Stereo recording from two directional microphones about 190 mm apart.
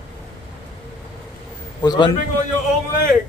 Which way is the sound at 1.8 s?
20° left (ahead or behind).